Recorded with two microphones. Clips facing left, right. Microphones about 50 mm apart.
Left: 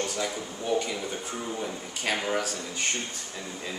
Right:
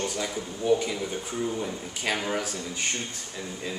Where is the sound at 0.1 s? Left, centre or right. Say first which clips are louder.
Even; centre.